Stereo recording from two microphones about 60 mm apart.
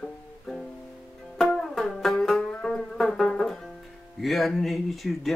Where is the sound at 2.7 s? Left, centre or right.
Centre.